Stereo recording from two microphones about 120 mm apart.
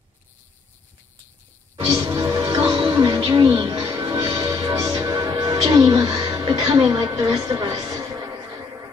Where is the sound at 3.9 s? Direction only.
25° right (ahead or behind).